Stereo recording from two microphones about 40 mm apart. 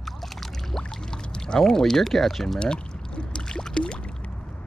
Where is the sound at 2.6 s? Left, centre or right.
Left.